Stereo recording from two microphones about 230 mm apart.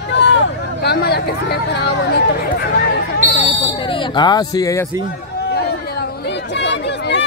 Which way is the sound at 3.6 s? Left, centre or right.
Left.